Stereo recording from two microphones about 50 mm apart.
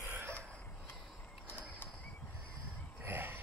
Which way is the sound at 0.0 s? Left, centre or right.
Right.